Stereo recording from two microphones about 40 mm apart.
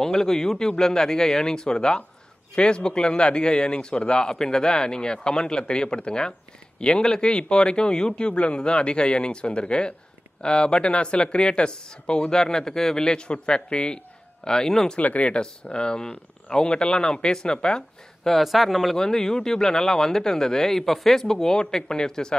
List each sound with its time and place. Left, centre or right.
0.0 s speech: centre
15.0 s speech: left
15.4 s speech: left
18.4 s speech: centre
18.9 s speech: centre